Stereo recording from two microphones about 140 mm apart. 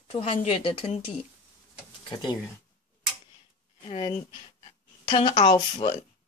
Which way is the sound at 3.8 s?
45° left (ahead or behind).